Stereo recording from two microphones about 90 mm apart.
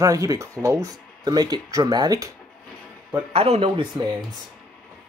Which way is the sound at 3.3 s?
90° right.